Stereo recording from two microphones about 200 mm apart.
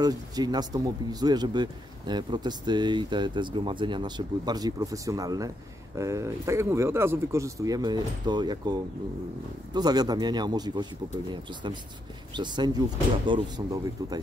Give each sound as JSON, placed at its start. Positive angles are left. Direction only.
{"t": 0.0, "sound": "speech", "side_deg": -20}
{"t": 9.8, "sound": "speech", "side_deg": -20}
{"t": 12.4, "sound": "speech", "side_deg": -20}